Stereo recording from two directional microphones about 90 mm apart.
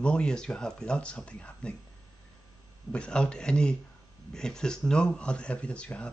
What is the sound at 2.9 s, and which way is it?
Speech, 10° left (ahead or behind).